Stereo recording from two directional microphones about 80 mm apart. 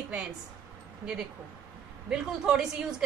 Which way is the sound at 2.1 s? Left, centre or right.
Centre.